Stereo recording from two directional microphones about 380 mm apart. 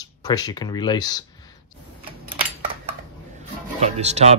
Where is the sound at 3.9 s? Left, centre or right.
Centre.